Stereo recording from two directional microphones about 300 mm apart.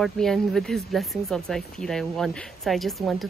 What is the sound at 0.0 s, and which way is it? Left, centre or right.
Speech, centre.